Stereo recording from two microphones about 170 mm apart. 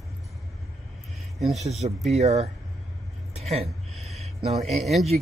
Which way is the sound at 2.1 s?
40° right (ahead or behind).